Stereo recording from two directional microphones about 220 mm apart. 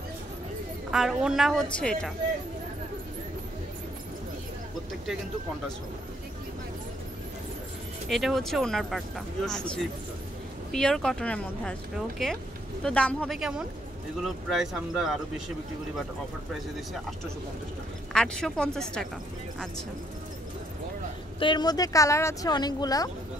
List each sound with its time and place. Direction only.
0.9 s speech: centre (ahead or behind)
8.1 s speech: centre (ahead or behind)
18.1 s speech: 5° left (ahead or behind)
21.4 s speech: 20° left (ahead or behind)